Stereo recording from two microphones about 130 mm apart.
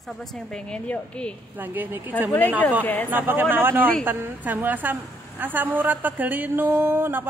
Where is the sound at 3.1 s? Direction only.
15° right (ahead or behind).